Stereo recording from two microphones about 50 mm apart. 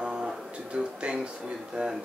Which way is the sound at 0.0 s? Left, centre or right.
Centre.